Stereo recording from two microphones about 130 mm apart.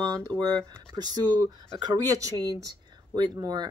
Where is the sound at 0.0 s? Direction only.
30° right (ahead or behind).